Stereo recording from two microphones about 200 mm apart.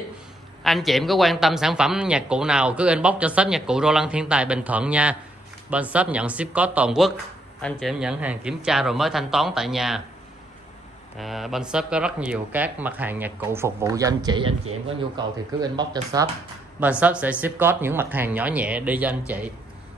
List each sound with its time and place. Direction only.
0.7 s speech: centre (ahead or behind)
11.1 s speech: centre (ahead or behind); by 16.3 s 20° right (ahead or behind)
17.0 s speech: 5° right (ahead or behind)